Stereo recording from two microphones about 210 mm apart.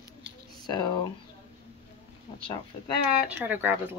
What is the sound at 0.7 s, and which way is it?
Speech, 20° left (ahead or behind).